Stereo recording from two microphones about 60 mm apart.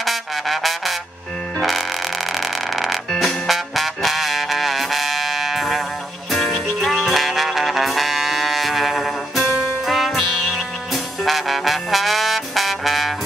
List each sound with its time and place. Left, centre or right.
0.0 s music: centre
2.3 s a sound: centre
3.2 s music: centre
10.9 s brass instrument: centre